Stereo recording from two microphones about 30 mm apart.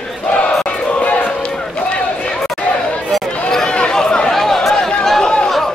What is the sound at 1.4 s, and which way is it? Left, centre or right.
Run, left.